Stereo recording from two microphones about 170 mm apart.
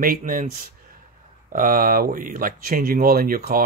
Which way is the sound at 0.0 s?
55° right (ahead or behind).